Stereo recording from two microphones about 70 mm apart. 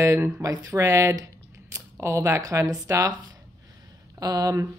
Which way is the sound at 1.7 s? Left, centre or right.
Right.